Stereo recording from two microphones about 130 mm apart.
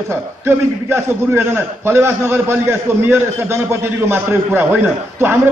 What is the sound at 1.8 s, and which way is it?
A man's voice, 20° right (ahead or behind).